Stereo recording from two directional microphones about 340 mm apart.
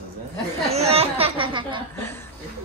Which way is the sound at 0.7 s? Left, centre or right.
Centre.